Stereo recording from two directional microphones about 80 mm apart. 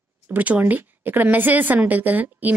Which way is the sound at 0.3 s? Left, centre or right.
Right.